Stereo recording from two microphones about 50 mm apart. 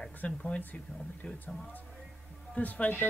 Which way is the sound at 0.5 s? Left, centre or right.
Left.